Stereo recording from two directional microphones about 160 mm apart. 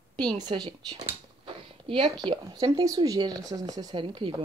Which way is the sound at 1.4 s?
30° right (ahead or behind).